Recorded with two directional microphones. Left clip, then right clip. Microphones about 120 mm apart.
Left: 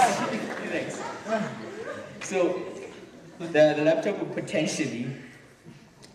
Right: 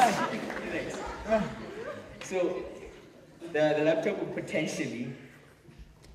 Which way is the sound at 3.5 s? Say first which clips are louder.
Left 5 dB; 50° left (ahead or behind).